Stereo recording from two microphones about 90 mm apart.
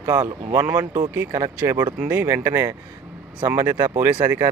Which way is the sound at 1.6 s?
40° right (ahead or behind).